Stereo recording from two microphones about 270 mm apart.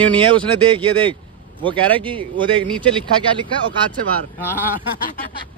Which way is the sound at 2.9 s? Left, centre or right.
Centre.